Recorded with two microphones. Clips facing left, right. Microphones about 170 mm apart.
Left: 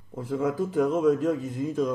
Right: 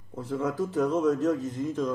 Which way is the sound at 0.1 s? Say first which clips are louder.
Left 2 dB; 10° left (ahead or behind).